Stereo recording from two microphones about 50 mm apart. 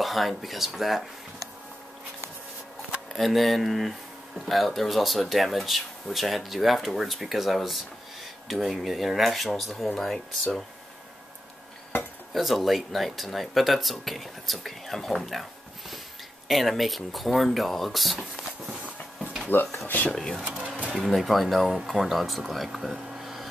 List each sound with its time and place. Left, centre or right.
0.0 s speech: centre
3.1 s speech: centre
12.3 s speech: centre
16.4 s speech: centre
19.5 s speech: left
20.6 s a sound: right
21.0 s speech: centre